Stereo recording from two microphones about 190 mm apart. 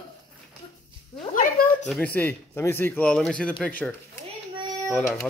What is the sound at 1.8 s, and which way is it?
Speech, 5° left (ahead or behind).